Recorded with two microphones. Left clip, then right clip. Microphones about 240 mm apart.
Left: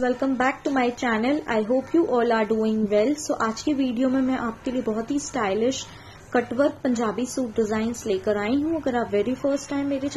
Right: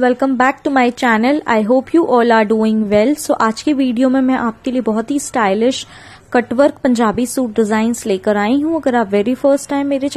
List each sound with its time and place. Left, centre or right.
0.0 s a woman's voice: right